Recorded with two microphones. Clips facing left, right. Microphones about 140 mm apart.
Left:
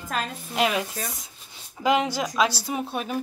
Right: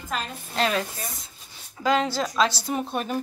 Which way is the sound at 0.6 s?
15° left (ahead or behind).